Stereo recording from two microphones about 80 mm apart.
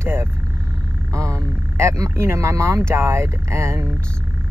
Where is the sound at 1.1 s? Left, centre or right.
Right.